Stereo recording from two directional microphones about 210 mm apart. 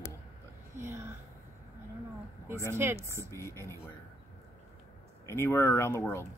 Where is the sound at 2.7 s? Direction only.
10° right (ahead or behind).